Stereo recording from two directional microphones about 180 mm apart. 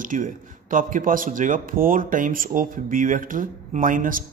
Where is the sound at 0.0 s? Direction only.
45° right (ahead or behind).